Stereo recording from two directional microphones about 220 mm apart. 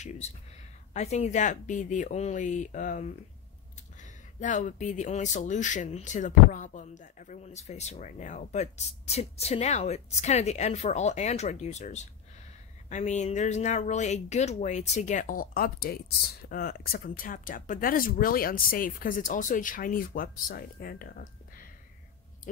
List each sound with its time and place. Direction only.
0.2 s speech: 30° left (ahead or behind)